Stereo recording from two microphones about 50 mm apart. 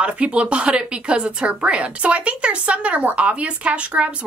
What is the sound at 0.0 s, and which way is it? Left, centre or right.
Speech, right.